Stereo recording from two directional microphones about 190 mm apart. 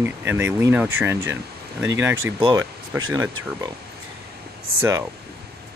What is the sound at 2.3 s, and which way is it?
Speech, 25° right (ahead or behind).